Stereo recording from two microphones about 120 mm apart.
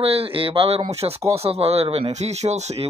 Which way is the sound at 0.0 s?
55° right (ahead or behind).